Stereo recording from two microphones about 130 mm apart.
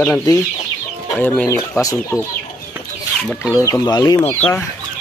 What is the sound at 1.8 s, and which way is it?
Speech, 25° left (ahead or behind).